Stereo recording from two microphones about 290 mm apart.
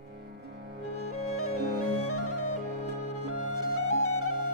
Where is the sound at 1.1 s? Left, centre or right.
Left.